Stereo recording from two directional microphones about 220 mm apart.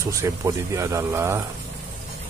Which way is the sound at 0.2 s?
15° right (ahead or behind).